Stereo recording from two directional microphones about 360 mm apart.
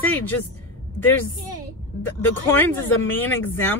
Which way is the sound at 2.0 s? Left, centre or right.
Centre.